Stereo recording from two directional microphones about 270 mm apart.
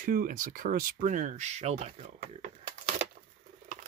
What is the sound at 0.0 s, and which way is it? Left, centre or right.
Speech, right.